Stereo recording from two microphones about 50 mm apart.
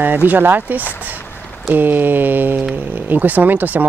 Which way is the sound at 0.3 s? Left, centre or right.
Right.